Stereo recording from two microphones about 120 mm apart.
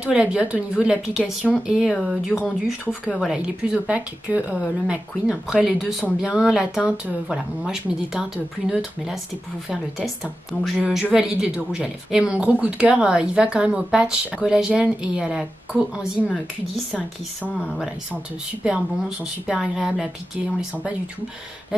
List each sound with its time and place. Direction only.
0.0 s a woman's voice: 10° right (ahead or behind)
16.3 s speech: 5° left (ahead or behind)
18.6 s speech: 5° right (ahead or behind)